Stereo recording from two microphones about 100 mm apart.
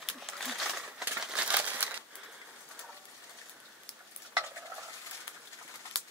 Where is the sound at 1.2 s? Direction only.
10° right (ahead or behind).